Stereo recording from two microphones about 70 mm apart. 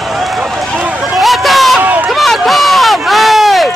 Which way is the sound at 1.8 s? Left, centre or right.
Right.